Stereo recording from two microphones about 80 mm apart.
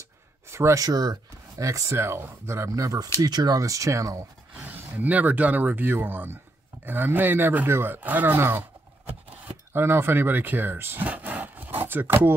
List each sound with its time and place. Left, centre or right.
0.5 s a sound: right
0.7 s speech: right
1.6 s speech: right
3.2 s speech: right
4.6 s speech: right